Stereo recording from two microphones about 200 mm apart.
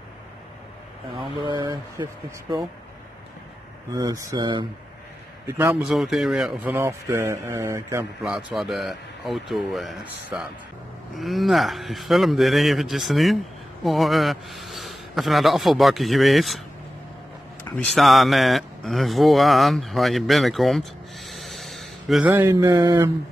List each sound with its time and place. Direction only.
1.4 s speech: 20° right (ahead or behind)
3.9 s speech: 15° right (ahead or behind)
5.5 s a man's voice: 10° right (ahead or behind)
17.6 s speech: 5° left (ahead or behind); by 23.1 s 15° right (ahead or behind)